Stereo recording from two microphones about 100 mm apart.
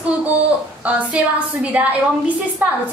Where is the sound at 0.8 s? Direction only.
15° right (ahead or behind).